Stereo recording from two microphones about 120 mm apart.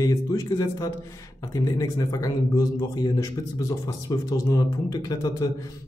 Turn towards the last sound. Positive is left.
turn(degrees=30)  # may be behind; listen again after turning